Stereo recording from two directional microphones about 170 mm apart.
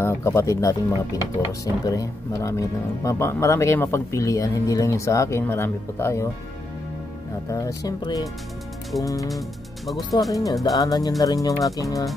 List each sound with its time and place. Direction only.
0.0 s speech: 15° left (ahead or behind)
7.4 s speech: 20° left (ahead or behind)
10.3 s speech: 20° left (ahead or behind)